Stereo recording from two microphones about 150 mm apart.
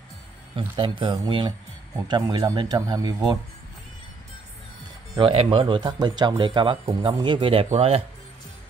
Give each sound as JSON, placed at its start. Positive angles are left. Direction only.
{"t": 0.6, "sound": "speech", "side_deg": -35}
{"t": 5.2, "sound": "speech", "side_deg": -40}